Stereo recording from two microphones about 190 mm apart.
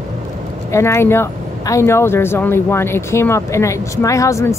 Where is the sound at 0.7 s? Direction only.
15° left (ahead or behind).